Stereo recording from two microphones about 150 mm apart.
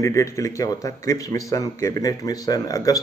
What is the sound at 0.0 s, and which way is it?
Speech, 20° left (ahead or behind).